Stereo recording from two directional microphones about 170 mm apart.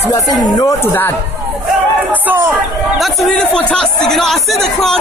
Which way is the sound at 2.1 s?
10° right (ahead or behind).